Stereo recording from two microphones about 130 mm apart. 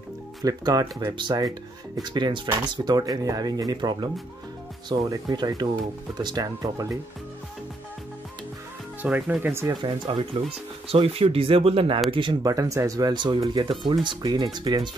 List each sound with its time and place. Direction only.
0.4 s speech: 30° right (ahead or behind)
9.0 s speech: 10° right (ahead or behind)
9.7 s speech: 35° right (ahead or behind)
10.9 s speech: 50° right (ahead or behind)
12.4 s speech: 25° right (ahead or behind)